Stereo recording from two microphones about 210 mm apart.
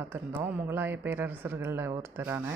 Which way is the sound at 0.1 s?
10° right (ahead or behind).